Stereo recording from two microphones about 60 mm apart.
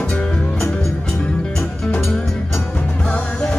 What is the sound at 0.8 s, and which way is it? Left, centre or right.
Music, centre.